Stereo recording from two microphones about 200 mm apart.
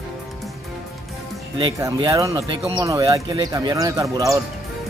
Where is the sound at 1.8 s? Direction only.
20° right (ahead or behind).